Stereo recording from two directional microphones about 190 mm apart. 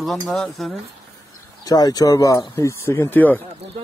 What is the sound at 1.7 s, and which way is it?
Speech, 20° left (ahead or behind).